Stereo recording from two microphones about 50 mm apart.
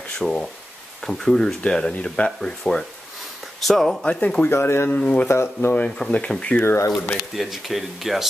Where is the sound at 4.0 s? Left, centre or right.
Left.